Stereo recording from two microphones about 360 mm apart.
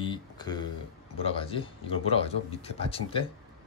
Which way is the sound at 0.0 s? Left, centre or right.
Centre.